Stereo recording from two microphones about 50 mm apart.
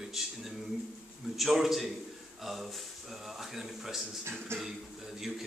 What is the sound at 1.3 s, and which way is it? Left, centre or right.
Speech, centre.